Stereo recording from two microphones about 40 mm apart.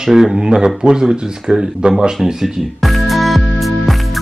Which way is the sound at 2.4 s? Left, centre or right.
Centre.